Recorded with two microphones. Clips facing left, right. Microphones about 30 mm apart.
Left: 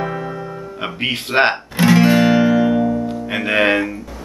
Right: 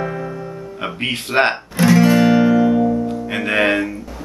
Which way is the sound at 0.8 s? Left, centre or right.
Centre.